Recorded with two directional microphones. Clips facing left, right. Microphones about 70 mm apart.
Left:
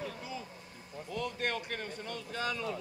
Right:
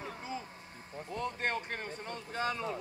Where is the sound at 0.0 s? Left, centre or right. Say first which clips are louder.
Even; right.